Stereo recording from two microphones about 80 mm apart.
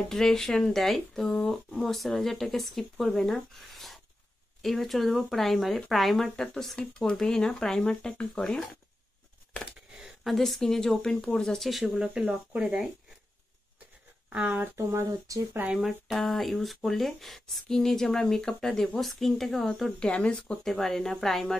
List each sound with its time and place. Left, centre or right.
0.1 s speech: centre
9.9 s speech: centre
11.9 s speech: centre
14.3 s speech: centre
14.6 s speech: right
15.7 s speech: centre